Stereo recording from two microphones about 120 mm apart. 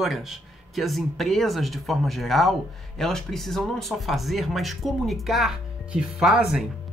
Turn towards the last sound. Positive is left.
turn(degrees=-5)  # may be behind; listen again after turning